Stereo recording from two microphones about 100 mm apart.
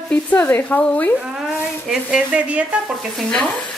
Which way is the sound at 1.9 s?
10° right (ahead or behind).